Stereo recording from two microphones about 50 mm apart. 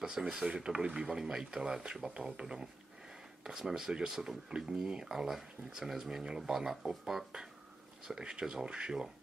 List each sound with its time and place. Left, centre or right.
0.0 s speech: centre